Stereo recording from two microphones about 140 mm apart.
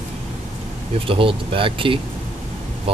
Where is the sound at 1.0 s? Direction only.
40° right (ahead or behind).